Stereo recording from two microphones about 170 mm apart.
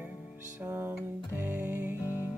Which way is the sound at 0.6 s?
15° right (ahead or behind).